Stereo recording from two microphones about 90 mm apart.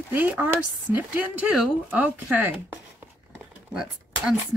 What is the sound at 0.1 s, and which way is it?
Speech, 20° right (ahead or behind).